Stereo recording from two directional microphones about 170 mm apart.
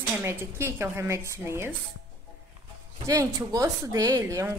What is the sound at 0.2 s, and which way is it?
Speech, 15° right (ahead or behind).